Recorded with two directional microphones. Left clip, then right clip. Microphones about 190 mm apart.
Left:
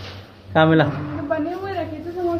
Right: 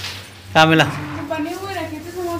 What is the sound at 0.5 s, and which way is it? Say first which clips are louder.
Speech: right 3 dB; 25° right (ahead or behind).